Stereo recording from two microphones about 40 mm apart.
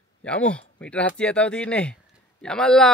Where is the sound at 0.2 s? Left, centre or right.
Left.